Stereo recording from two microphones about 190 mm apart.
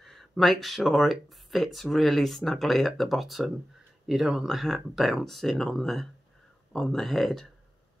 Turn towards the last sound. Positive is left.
turn(degrees=0)  # may be behind; listen again after turning